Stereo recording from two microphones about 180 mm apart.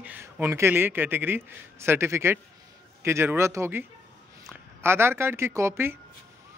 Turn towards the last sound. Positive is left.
turn(degrees=-15)  # may be behind; listen again after turning